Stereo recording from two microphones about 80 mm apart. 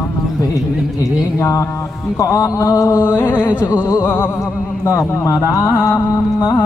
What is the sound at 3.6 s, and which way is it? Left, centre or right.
Music, left.